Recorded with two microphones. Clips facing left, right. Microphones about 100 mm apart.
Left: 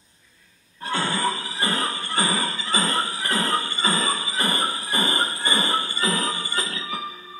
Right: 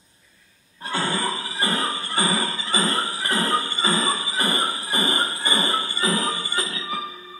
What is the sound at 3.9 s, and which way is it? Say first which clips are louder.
Music: right 1 dB; 25° right (ahead or behind).